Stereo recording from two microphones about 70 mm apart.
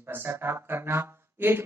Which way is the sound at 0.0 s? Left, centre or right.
Right.